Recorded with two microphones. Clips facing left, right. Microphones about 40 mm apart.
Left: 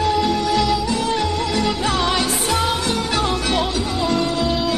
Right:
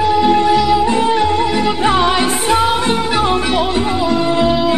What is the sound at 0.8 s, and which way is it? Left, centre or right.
Music, right.